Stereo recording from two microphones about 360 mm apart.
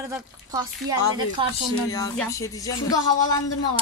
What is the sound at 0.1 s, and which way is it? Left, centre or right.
Speech, centre.